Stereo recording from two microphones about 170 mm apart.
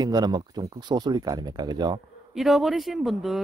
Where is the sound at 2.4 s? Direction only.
Centre (ahead or behind).